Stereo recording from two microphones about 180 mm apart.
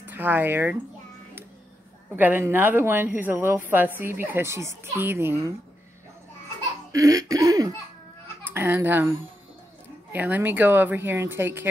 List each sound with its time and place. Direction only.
0.1 s a woman's voice: 10° right (ahead or behind)
2.1 s a woman's voice: 10° right (ahead or behind)
6.9 s laughter: 20° right (ahead or behind)
8.5 s a woman's voice: 10° right (ahead or behind)
10.1 s a woman's voice: 10° right (ahead or behind)